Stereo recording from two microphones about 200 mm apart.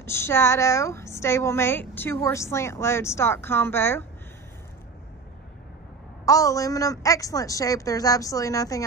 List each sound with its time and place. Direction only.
0.0 s a woman's voice: 10° left (ahead or behind)
6.2 s a woman's voice: 15° left (ahead or behind)